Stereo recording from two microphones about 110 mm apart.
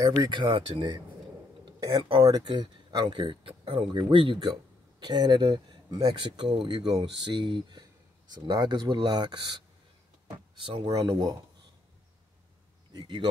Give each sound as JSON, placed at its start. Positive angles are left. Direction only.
{"t": 0.2, "sound": "speech", "side_deg": -45}
{"t": 1.7, "sound": "a sound", "side_deg": -35}
{"t": 2.2, "sound": "speech", "side_deg": -40}
{"t": 5.0, "sound": "speech", "side_deg": -40}
{"t": 8.3, "sound": "speech", "side_deg": -40}
{"t": 10.9, "sound": "speech", "side_deg": -30}
{"t": 12.9, "sound": "speech", "side_deg": -45}